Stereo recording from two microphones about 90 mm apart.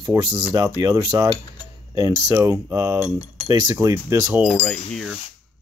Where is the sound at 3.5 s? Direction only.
50° right (ahead or behind).